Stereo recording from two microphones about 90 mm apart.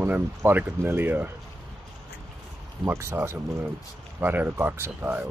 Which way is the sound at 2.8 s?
30° right (ahead or behind).